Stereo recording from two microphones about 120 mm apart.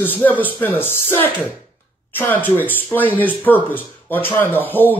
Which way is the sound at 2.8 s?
15° left (ahead or behind).